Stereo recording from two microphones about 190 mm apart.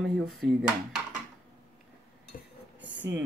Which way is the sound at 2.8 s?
70° right (ahead or behind).